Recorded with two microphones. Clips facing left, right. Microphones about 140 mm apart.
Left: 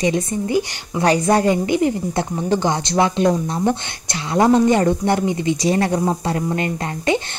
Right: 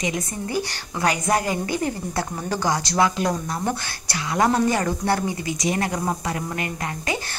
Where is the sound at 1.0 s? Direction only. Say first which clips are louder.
Left 7 dB; 30° left (ahead or behind).